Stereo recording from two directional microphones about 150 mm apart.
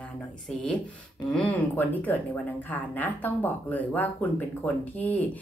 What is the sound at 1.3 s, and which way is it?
Speech, 10° left (ahead or behind).